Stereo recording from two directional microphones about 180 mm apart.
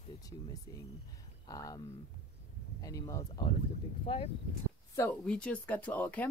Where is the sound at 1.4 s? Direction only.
20° left (ahead or behind).